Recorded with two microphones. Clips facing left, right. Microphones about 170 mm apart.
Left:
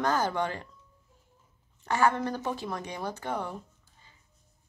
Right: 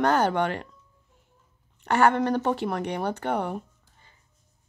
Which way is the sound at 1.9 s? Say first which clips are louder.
Right 5 dB; 70° right (ahead or behind).